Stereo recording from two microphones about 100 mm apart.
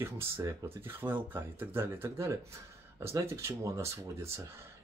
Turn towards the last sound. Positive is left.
turn(degrees=-30)  # may be behind; listen again after turning